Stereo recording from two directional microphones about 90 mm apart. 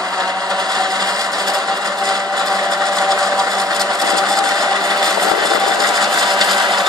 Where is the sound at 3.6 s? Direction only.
45° right (ahead or behind).